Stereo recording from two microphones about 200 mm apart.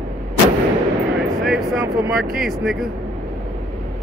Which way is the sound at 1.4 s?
Centre (ahead or behind).